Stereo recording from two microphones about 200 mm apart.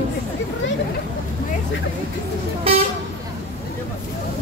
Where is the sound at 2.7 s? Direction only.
30° right (ahead or behind).